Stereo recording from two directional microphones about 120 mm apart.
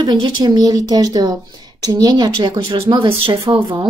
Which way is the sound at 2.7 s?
50° right (ahead or behind).